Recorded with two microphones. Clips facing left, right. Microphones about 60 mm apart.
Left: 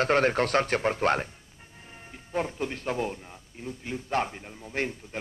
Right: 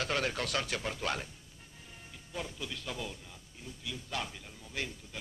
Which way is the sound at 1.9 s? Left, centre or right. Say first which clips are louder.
Left 11 dB; left.